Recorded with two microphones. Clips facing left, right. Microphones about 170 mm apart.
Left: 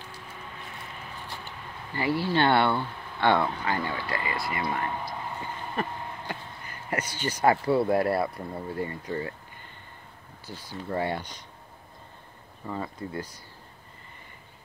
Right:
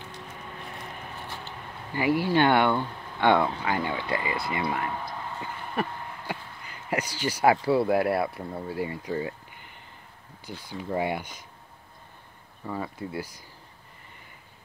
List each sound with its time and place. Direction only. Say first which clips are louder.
2.0 s speech: right 2 dB; 15° right (ahead or behind)
12.6 s speech: right 1 dB; 5° right (ahead or behind)